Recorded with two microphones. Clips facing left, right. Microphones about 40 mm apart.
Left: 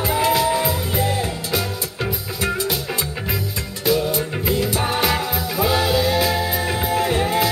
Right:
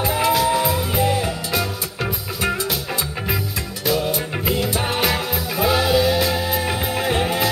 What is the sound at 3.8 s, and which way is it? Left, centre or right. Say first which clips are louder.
Music: left 2 dB; centre.